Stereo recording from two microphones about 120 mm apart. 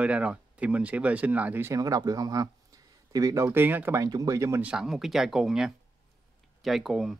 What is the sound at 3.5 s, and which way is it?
Speech, 15° right (ahead or behind).